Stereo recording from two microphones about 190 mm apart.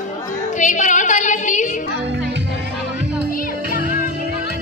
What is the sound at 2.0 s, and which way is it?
Music, 65° right (ahead or behind).